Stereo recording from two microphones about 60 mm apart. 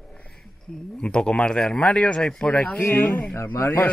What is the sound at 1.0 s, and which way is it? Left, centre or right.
Speech, centre.